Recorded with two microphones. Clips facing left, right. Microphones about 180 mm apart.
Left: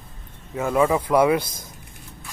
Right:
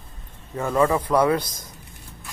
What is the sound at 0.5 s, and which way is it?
Speech, 10° left (ahead or behind).